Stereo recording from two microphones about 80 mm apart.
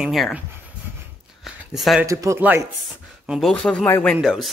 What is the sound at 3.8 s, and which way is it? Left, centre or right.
Speech, left.